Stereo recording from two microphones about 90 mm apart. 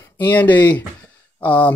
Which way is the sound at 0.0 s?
20° left (ahead or behind).